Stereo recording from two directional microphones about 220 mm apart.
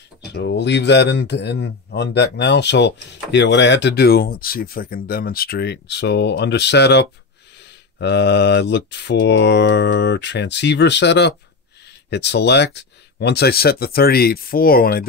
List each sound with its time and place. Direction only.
0.3 s a man's voice: 50° left (ahead or behind)